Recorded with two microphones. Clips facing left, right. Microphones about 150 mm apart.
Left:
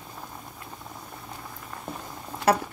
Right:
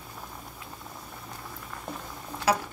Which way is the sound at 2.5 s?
55° left (ahead or behind).